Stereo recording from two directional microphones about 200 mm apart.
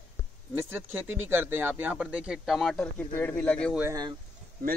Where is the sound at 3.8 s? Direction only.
15° right (ahead or behind).